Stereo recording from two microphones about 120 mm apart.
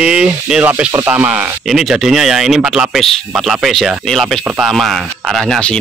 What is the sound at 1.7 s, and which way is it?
Speech, centre (ahead or behind).